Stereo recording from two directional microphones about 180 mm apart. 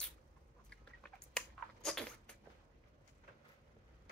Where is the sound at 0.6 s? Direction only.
5° left (ahead or behind).